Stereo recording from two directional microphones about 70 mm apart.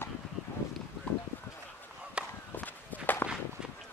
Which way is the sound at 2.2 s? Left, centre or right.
Centre.